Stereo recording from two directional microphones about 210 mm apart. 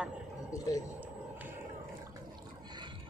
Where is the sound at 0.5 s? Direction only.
15° left (ahead or behind).